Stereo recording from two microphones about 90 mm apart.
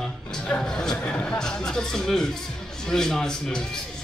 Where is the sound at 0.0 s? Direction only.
5° left (ahead or behind).